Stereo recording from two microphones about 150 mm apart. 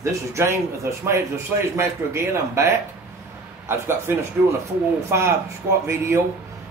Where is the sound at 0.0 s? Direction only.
20° right (ahead or behind).